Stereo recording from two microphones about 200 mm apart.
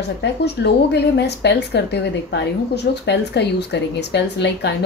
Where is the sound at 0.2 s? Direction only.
55° left (ahead or behind).